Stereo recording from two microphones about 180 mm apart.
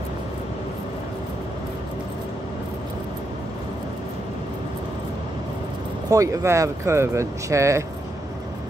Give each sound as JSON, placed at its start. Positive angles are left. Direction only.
{"t": 6.0, "sound": "speech", "side_deg": -15}